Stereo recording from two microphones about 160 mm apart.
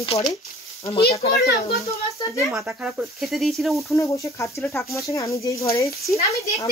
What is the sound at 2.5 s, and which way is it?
Speech, 10° right (ahead or behind).